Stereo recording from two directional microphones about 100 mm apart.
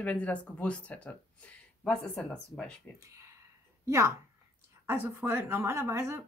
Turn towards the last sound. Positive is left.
turn(degrees=-25)  # may be behind; listen again after turning